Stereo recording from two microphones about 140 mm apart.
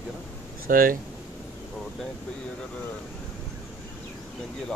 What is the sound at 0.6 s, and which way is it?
Speech, 90° right.